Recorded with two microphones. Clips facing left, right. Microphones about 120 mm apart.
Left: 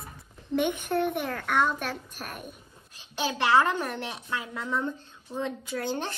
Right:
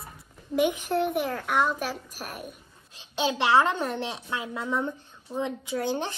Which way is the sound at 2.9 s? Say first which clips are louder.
Right 3 dB; 20° right (ahead or behind).